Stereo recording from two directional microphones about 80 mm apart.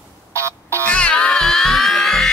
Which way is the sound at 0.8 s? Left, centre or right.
Centre.